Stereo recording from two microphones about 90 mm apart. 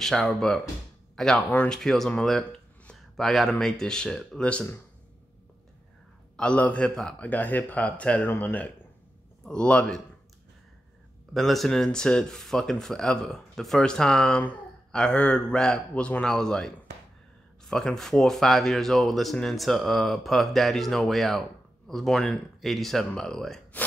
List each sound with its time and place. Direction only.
0.0 s speech: 5° left (ahead or behind)
4.4 s speech: 15° left (ahead or behind)
6.3 s speech: 10° left (ahead or behind)
9.4 s speech: 10° left (ahead or behind)
11.3 s speech: centre (ahead or behind)